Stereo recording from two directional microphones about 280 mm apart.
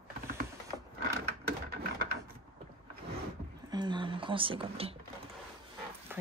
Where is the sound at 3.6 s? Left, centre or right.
Centre.